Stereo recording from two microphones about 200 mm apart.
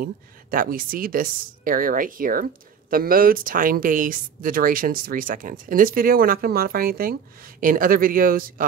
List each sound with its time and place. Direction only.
0.0 s speech: 45° right (ahead or behind)